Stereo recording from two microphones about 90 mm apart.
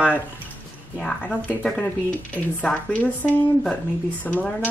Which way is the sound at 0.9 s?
10° left (ahead or behind).